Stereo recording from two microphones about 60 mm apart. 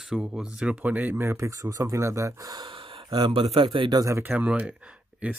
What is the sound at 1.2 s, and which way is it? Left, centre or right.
Speech, right.